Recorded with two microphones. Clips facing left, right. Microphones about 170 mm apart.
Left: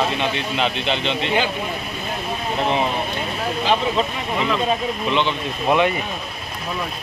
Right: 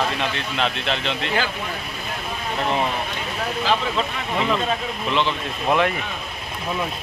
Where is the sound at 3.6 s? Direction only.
25° left (ahead or behind).